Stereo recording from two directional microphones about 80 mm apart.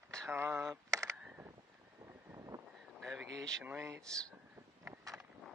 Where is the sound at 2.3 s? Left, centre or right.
Right.